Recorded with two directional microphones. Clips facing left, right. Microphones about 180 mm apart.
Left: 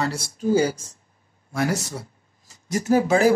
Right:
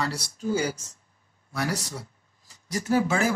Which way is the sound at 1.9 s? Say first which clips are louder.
Left 4 dB; 45° left (ahead or behind).